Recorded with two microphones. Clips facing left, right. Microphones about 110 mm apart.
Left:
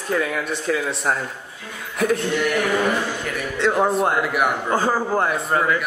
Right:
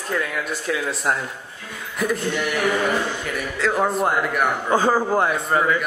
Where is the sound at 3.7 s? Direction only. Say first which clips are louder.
Left 2 dB; 5° left (ahead or behind).